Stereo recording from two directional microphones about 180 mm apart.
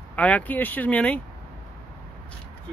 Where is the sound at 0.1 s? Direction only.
10° left (ahead or behind).